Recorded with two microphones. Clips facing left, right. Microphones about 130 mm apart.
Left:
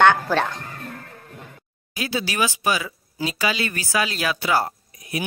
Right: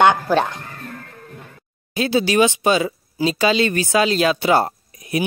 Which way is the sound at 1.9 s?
25° right (ahead or behind).